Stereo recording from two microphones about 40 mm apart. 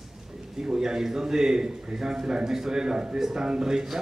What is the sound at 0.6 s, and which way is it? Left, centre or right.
A man's voice, centre.